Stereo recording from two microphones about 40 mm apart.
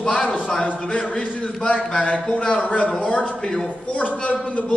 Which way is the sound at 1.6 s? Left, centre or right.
Centre.